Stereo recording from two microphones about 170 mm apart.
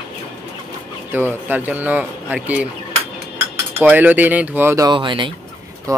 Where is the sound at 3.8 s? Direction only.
10° right (ahead or behind).